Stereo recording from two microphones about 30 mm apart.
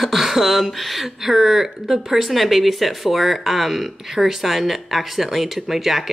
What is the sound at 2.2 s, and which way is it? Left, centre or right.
Speech, centre.